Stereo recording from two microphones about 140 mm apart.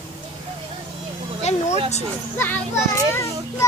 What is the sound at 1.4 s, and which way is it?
Speech, 55° left (ahead or behind).